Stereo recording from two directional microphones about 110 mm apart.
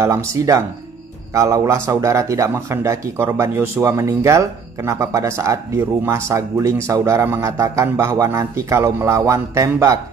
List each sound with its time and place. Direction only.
0.0 s a man's voice: 25° right (ahead or behind)